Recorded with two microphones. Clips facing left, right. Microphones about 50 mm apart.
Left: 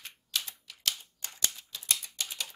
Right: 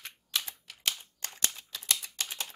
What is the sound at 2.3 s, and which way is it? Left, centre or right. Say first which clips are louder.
Typing: even; right.